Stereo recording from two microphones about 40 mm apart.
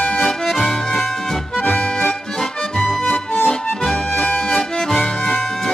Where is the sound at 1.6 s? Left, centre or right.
Left.